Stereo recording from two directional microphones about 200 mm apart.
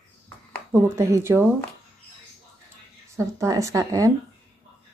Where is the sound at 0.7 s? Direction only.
15° right (ahead or behind).